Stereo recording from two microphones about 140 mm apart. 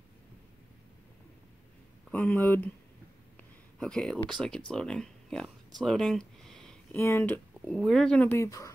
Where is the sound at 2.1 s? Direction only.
10° left (ahead or behind).